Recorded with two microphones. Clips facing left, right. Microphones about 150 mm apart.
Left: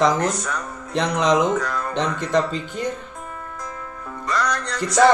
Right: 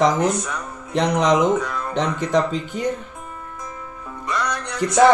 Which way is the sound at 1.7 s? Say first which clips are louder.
Right 1 dB; 5° right (ahead or behind).